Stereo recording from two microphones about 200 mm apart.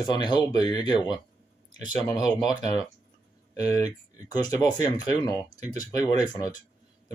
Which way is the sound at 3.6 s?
20° left (ahead or behind).